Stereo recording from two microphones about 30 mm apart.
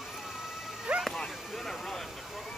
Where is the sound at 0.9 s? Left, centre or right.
Right.